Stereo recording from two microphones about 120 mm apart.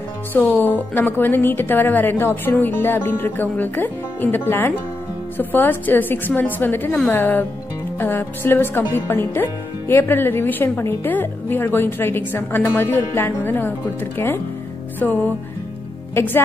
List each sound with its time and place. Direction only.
0.3 s speech: 15° left (ahead or behind)